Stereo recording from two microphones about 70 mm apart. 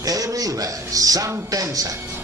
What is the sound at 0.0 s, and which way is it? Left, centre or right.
A man's voice, right.